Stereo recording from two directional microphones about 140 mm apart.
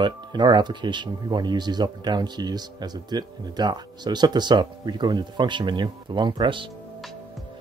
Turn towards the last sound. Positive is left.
turn(degrees=-35)  # may be behind; listen again after turning